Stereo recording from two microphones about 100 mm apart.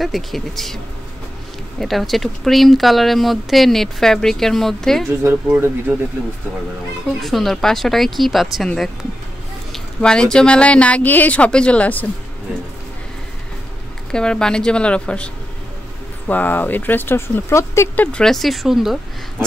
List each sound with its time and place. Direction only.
0.0 s speech: centre (ahead or behind)
1.8 s speech: centre (ahead or behind)
5.5 s speech: 15° right (ahead or behind)
7.2 s a woman's voice: centre (ahead or behind)
14.1 s a woman's voice: 10° left (ahead or behind); by 17.8 s 25° left (ahead or behind)
17.9 s speech: 10° left (ahead or behind); by 18.9 s 5° right (ahead or behind)